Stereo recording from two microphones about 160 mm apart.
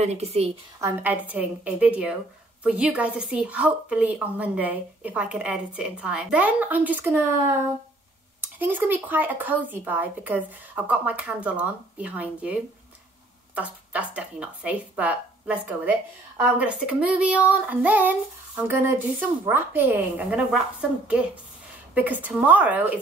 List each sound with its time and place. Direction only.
0.0 s a woman's voice: 40° right (ahead or behind)
0.7 s a woman's voice: 15° right (ahead or behind)
13.6 s a woman's voice: 10° right (ahead or behind)
21.9 s a woman's voice: 10° right (ahead or behind)